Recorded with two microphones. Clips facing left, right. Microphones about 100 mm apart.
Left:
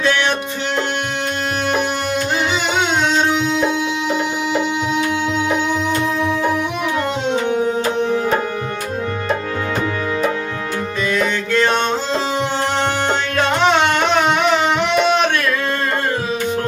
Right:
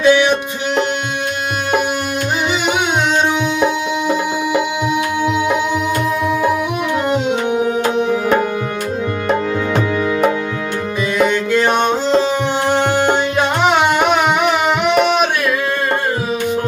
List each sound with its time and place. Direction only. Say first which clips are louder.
0.0 s music: right 6 dB; 15° right (ahead or behind)
7.1 s music: right 2 dB; 15° right (ahead or behind)
11.1 s music: right 4 dB; 15° right (ahead or behind)